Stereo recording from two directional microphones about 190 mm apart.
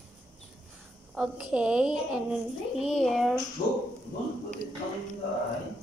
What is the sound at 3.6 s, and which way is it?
Speech, 40° left (ahead or behind).